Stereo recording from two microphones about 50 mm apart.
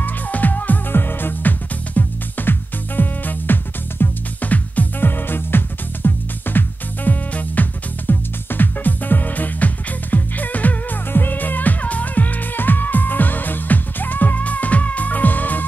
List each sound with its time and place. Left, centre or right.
0.0 s music: left